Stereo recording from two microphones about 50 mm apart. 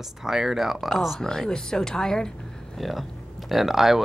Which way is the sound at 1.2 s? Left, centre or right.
Centre.